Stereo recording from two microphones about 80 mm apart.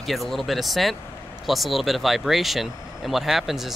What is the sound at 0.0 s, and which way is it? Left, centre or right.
Speech, centre.